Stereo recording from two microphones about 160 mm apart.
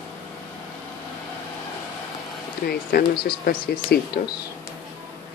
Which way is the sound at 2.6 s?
70° left (ahead or behind).